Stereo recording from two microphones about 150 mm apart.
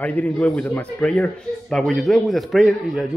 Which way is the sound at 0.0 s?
10° left (ahead or behind).